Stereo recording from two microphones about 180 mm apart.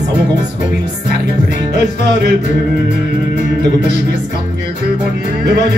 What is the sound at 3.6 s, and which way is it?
Music, 70° right (ahead or behind).